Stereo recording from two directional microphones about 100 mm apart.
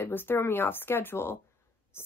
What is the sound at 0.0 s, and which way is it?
Speech, 20° left (ahead or behind).